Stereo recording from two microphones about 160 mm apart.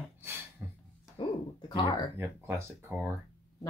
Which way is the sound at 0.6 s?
10° right (ahead or behind).